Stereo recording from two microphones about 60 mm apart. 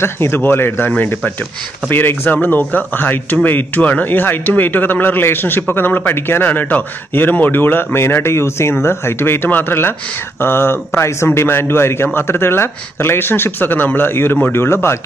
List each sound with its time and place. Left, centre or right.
0.0 s speech: left
11.2 s speech: left